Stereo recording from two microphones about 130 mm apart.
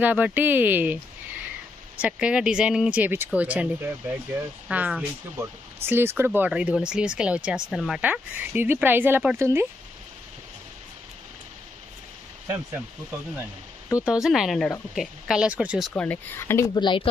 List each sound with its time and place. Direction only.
0.0 s speech: 15° right (ahead or behind)
2.0 s speech: 10° right (ahead or behind)
8.0 s speech: 15° right (ahead or behind)
14.0 s speech: 5° right (ahead or behind)
15.9 s speech: 10° left (ahead or behind)
16.7 s speech: 40° left (ahead or behind)